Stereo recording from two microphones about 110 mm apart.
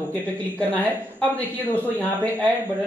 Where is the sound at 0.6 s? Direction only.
15° left (ahead or behind).